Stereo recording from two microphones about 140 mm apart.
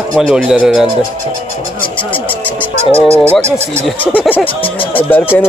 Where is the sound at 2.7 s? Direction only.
50° right (ahead or behind).